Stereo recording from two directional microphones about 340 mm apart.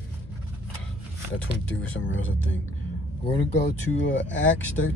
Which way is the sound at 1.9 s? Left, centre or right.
Left.